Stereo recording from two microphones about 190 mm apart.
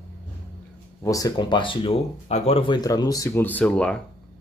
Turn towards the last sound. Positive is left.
turn(degrees=5)  # may be behind; listen again after turning